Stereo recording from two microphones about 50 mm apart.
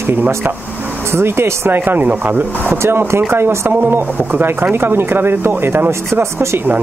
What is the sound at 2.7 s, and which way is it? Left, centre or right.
Speech, right.